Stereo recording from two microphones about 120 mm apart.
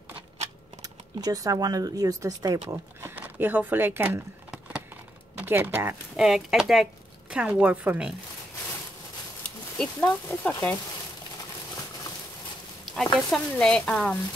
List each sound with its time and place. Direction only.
0.8 s speech: 30° right (ahead or behind)
3.0 s speech: 15° right (ahead or behind)
5.4 s speech: 20° right (ahead or behind)
6.1 s a woman's voice: 5° right (ahead or behind)
9.8 s stir: 10° left (ahead or behind)
12.9 s stir: 5° left (ahead or behind)